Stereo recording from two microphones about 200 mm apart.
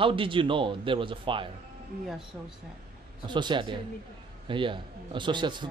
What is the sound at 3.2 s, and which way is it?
A man's voice, 25° right (ahead or behind).